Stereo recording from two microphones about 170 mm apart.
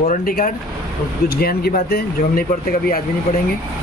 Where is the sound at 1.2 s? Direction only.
65° left (ahead or behind).